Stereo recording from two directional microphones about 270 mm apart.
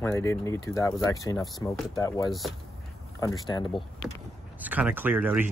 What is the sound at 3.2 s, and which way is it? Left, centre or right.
Speech, centre.